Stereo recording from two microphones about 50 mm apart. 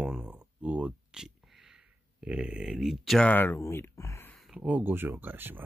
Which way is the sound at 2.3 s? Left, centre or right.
Centre.